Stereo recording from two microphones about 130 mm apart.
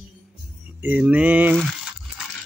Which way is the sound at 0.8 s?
10° right (ahead or behind).